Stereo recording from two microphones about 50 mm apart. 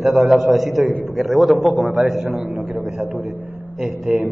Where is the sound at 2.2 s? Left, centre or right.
Right.